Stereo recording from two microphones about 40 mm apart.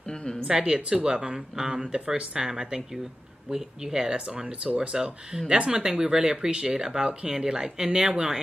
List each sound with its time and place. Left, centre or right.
0.5 s speech: right